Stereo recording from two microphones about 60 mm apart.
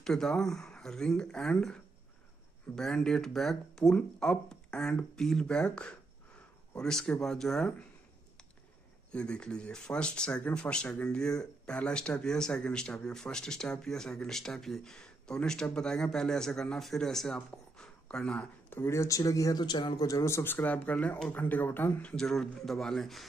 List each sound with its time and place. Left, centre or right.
0.0 s speech: centre
9.1 s speech: centre
18.7 s speech: left
20.0 s speech: left
20.2 s speech: left
20.5 s speech: left
22.1 s speech: centre